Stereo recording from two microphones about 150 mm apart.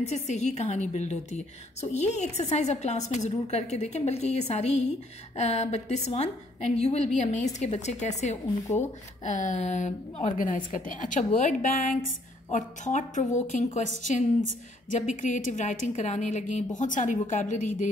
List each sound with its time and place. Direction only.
0.1 s a woman's voice: 50° left (ahead or behind)
10.3 s a woman's voice: 65° left (ahead or behind)
14.9 s a woman's voice: 55° left (ahead or behind)